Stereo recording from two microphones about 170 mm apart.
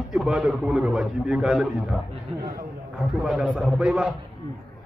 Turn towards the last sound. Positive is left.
turn(degrees=-5)  # may be behind; listen again after turning